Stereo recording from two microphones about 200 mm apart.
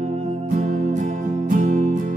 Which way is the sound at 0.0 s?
30° right (ahead or behind).